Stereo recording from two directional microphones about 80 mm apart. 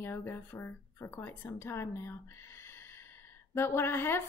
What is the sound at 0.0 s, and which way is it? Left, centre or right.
Speech, left.